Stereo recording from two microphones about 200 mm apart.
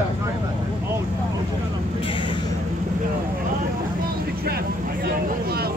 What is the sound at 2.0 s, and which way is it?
Speech, 25° left (ahead or behind).